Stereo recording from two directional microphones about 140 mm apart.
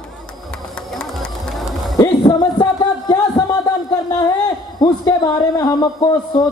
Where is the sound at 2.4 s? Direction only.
30° left (ahead or behind).